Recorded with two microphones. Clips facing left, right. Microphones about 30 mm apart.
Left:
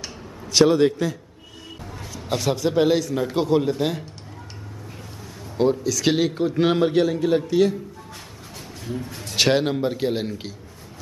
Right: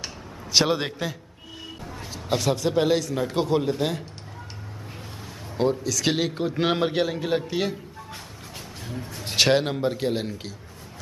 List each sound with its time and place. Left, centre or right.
0.0 s a sound: centre
2.2 s a man's voice: centre
5.6 s a man's voice: centre
8.8 s speech: centre
9.4 s a man's voice: centre